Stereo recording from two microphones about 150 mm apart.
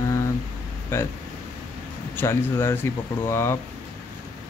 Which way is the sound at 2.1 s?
15° left (ahead or behind).